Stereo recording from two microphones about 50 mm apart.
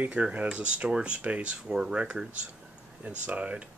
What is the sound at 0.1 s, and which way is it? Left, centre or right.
Speech, right.